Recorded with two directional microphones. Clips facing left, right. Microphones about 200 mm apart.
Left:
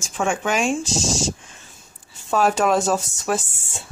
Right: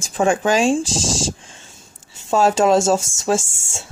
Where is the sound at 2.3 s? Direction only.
25° right (ahead or behind).